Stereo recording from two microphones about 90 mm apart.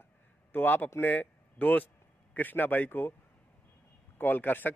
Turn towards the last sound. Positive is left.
turn(degrees=20)  # may be behind; listen again after turning